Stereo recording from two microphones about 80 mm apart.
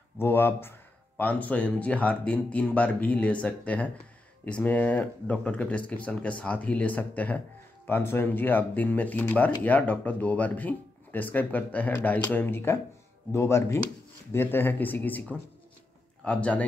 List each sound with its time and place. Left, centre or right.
0.2 s speech: left